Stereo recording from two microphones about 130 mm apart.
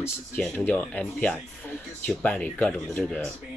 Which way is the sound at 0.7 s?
10° left (ahead or behind).